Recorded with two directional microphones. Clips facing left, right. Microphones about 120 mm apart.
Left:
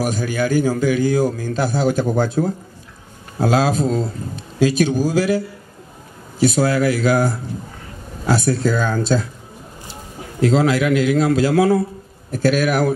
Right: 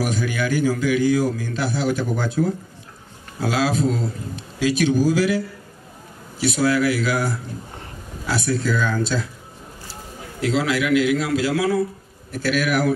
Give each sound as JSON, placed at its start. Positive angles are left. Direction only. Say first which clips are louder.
{"t": 0.0, "sound": "a man's voice", "louder": "left 3 dB", "side_deg": 40}
{"t": 6.4, "sound": "a man's voice", "louder": "left 3 dB", "side_deg": 40}
{"t": 10.4, "sound": "a man's voice", "louder": "left 5 dB", "side_deg": 40}